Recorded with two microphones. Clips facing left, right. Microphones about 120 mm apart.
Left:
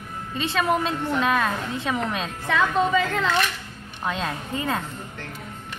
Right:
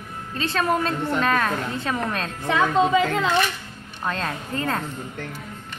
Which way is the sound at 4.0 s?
5° left (ahead or behind).